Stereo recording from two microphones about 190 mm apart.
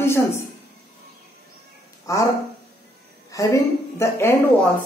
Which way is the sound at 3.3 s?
15° left (ahead or behind).